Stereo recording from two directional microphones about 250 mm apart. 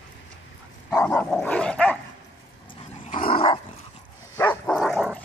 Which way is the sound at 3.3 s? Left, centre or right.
Centre.